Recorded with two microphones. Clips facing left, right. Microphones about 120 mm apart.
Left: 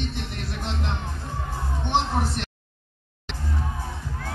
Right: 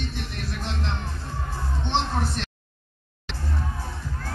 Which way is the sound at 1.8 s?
15° left (ahead or behind).